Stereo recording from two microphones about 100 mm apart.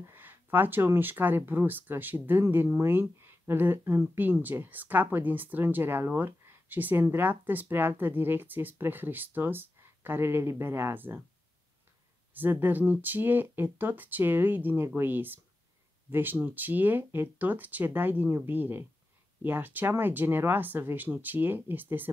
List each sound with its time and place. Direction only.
0.0 s speech: 20° right (ahead or behind)
12.4 s speech: 20° right (ahead or behind)